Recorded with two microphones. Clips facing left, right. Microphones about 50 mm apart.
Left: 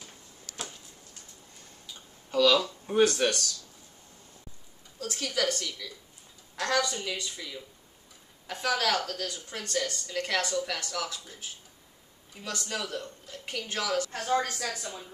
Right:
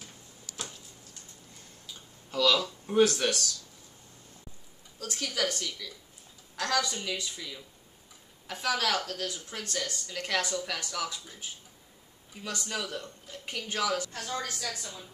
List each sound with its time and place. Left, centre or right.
0.5 s a sound: left
2.3 s speech: centre
4.9 s speech: centre
14.1 s a woman's voice: left